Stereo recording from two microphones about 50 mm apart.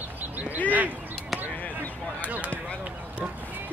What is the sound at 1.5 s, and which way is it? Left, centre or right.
Basketball bounce, left.